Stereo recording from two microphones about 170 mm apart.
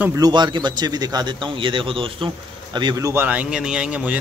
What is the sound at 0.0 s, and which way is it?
A man's voice, 20° right (ahead or behind).